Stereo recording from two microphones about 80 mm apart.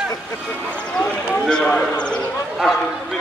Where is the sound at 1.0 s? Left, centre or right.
Centre.